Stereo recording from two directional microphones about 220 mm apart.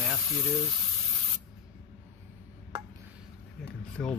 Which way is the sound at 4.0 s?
5° left (ahead or behind).